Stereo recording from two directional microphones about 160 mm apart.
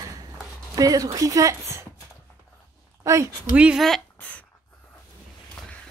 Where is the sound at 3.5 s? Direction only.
5° right (ahead or behind).